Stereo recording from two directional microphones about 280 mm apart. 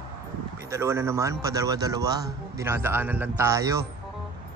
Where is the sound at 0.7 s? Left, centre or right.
Centre.